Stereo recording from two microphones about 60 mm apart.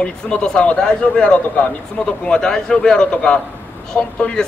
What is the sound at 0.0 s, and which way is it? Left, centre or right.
Speech, centre.